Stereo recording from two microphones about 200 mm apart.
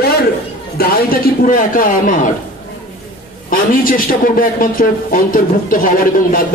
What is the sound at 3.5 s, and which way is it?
A man's voice, 45° left (ahead or behind).